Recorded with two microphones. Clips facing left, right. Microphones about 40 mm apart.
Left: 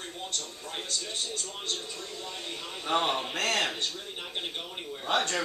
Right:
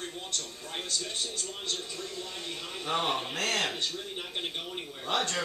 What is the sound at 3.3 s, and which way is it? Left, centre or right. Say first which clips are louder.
Speech: left 2 dB; left.